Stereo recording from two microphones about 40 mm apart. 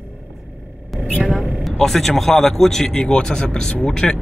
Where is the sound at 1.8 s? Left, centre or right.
Centre.